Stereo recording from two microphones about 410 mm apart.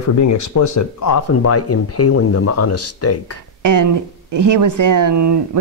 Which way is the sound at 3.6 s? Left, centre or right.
Right.